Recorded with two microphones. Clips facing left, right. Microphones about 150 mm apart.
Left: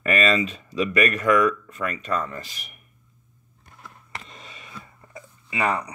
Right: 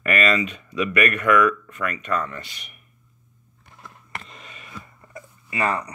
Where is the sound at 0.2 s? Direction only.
30° left (ahead or behind).